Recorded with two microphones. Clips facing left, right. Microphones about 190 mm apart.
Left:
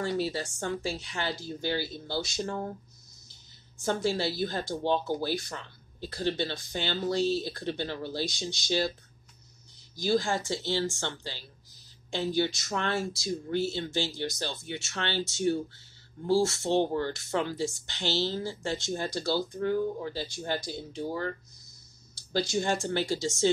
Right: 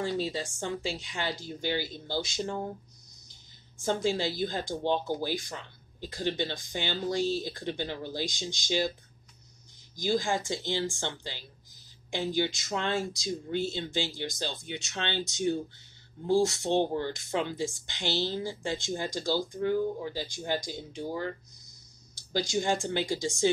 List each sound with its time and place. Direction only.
0.0 s speech: 20° right (ahead or behind)
3.8 s speech: 15° right (ahead or behind)
9.9 s speech: 15° right (ahead or behind)